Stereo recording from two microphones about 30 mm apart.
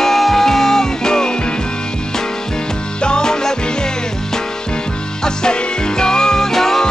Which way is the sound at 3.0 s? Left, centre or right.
Left.